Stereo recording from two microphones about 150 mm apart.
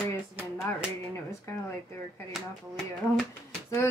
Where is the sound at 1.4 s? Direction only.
20° left (ahead or behind).